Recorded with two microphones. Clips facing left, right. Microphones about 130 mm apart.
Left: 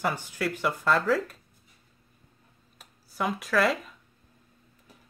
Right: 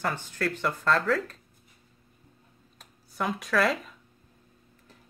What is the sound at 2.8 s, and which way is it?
Speech, centre (ahead or behind).